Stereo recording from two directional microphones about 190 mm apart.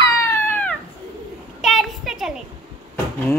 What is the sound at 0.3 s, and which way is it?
Cat, 10° left (ahead or behind).